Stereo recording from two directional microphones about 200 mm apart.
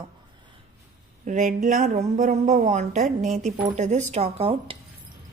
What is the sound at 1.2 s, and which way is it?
Speech, 40° right (ahead or behind).